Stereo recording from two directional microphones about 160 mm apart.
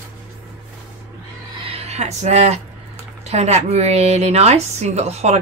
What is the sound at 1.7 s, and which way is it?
A woman's voice, 40° right (ahead or behind).